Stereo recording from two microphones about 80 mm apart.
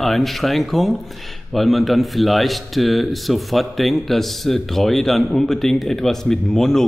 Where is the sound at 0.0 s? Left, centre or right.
Centre.